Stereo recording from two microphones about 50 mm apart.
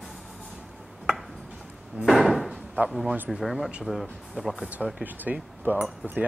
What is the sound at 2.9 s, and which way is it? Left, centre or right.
Speech, centre.